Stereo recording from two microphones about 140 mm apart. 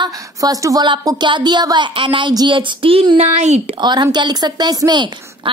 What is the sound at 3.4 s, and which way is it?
Speech, 50° right (ahead or behind).